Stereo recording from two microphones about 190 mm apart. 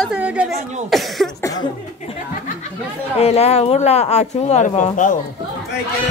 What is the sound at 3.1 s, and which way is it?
Speech, 35° left (ahead or behind).